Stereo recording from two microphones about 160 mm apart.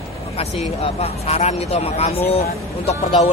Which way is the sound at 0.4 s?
40° left (ahead or behind).